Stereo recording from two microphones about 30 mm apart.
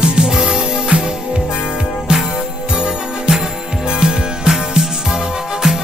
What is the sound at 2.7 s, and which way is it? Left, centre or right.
Music, right.